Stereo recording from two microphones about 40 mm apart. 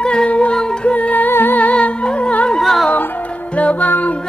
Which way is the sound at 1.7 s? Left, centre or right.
Left.